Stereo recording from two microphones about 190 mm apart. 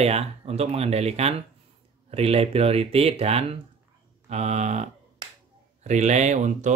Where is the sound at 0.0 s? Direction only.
35° right (ahead or behind).